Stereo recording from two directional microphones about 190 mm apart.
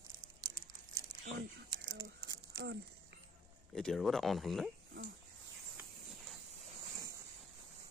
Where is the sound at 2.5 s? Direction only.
65° right (ahead or behind).